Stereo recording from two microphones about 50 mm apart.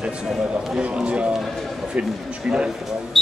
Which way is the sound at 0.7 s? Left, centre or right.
Right.